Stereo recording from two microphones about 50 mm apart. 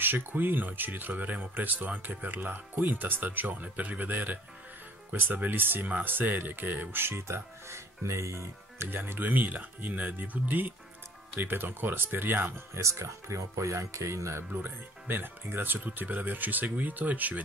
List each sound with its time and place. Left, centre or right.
0.0 s speech: right
8.9 s speech: right
12.7 s speech: right
14.5 s speech: right